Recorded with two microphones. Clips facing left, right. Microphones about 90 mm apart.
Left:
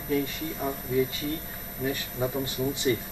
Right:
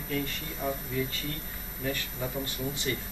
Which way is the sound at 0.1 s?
15° left (ahead or behind).